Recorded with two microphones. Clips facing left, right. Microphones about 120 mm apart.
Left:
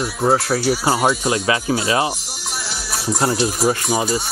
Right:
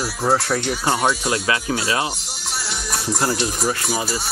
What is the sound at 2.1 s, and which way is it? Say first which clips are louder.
Music: left 3 dB; centre (ahead or behind).